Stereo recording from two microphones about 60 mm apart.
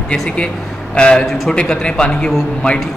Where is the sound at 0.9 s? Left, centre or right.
Centre.